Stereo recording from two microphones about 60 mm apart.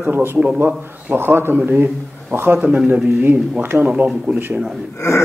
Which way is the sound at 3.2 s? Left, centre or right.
Right.